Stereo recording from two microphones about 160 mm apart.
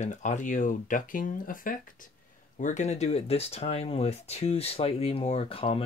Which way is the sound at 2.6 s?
45° left (ahead or behind).